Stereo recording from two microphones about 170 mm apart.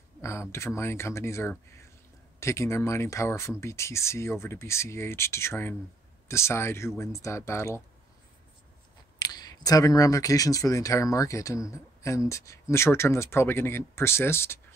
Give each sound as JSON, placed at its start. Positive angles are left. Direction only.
{"t": 0.2, "sound": "speech", "side_deg": 15}
{"t": 9.2, "sound": "speech", "side_deg": 25}